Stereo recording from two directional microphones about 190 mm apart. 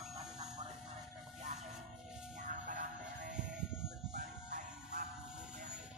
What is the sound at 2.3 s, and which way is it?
Music, 45° right (ahead or behind).